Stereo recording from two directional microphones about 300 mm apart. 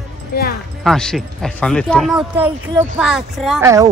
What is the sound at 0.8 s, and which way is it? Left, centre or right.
Speech, centre.